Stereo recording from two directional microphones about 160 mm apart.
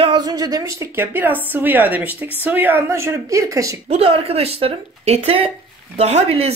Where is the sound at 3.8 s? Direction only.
35° right (ahead or behind).